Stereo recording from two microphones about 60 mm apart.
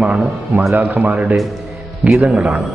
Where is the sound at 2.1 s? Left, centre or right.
Centre.